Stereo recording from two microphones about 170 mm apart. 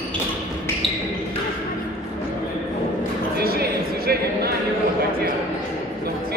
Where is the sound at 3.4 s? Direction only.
65° right (ahead or behind).